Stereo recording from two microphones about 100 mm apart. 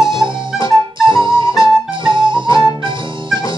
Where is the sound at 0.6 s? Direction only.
55° right (ahead or behind).